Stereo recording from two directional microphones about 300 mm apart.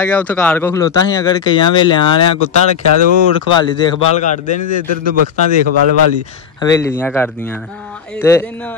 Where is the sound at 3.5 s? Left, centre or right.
Centre.